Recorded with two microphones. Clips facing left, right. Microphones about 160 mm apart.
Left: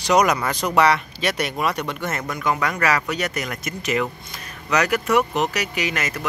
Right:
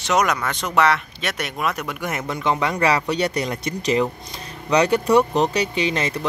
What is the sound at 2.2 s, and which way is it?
Speech, 25° right (ahead or behind).